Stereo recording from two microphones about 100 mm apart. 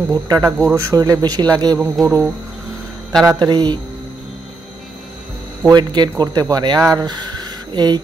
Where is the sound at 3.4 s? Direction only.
45° right (ahead or behind).